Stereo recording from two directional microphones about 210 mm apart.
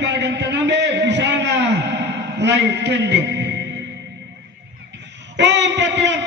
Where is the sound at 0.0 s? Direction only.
55° right (ahead or behind).